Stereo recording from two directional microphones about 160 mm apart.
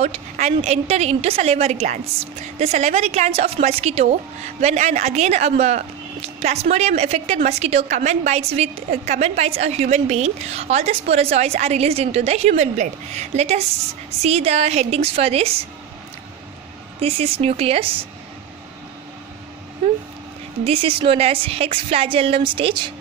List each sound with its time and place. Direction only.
0.0 s a woman's voice: 45° right (ahead or behind)
17.0 s a woman's voice: 40° right (ahead or behind)
20.6 s a woman's voice: 35° right (ahead or behind)